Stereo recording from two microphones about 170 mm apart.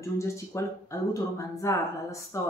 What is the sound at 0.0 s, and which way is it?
Speech, 15° left (ahead or behind).